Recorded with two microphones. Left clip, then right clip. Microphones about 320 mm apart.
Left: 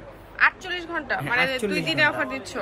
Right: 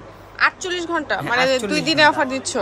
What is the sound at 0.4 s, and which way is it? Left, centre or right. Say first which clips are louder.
A woman's voice: right 2 dB; centre.